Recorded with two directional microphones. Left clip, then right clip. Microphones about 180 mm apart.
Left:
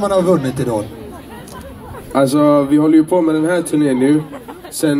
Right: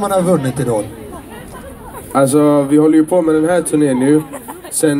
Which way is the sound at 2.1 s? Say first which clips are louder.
Right 1 dB; 20° right (ahead or behind).